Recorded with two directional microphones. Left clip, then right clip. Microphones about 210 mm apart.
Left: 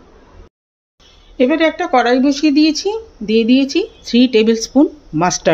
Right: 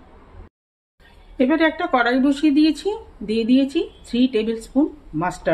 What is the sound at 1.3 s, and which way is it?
Speech, 10° left (ahead or behind).